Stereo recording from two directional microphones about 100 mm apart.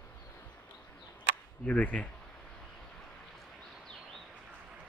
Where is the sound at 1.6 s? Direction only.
15° left (ahead or behind).